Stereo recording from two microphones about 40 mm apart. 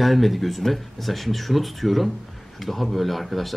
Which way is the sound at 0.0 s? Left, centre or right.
Centre.